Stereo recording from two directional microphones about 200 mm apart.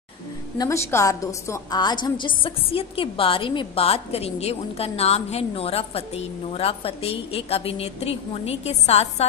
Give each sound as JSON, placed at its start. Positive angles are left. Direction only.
{"t": 0.6, "sound": "a woman's voice", "side_deg": 15}